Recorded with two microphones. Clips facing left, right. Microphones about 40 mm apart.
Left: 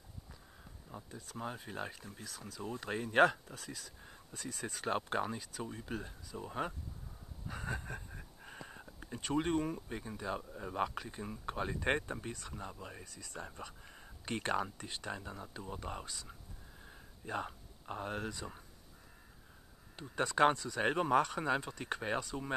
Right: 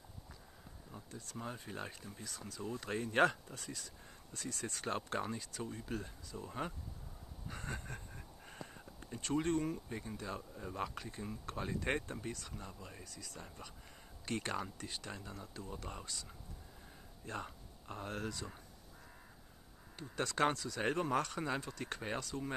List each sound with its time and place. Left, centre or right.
1.1 s speech: centre
4.0 s speech: centre
7.4 s a sound: centre
9.8 s speech: centre
17.5 s speech: left
20.0 s speech: left